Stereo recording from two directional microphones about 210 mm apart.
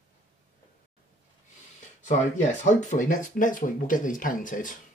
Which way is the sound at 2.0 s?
35° left (ahead or behind).